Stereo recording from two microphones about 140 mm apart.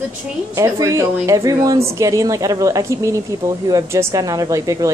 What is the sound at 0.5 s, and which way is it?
A woman's voice, 25° right (ahead or behind).